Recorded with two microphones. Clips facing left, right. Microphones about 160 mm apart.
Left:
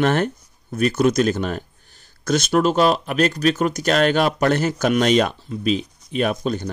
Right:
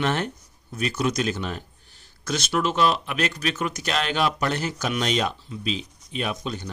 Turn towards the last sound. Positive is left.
turn(degrees=45)  # may be behind; listen again after turning